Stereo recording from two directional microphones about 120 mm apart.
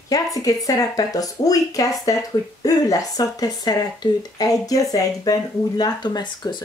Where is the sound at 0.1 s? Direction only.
30° left (ahead or behind).